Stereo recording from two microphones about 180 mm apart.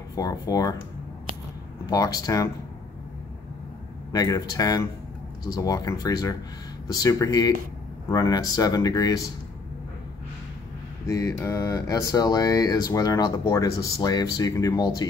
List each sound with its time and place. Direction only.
0.1 s speech: 20° left (ahead or behind)
1.9 s speech: 20° left (ahead or behind)
4.1 s speech: 20° left (ahead or behind)
11.1 s speech: 20° left (ahead or behind)